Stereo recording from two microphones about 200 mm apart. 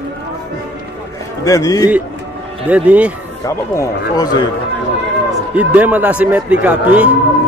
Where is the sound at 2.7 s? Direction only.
5° right (ahead or behind).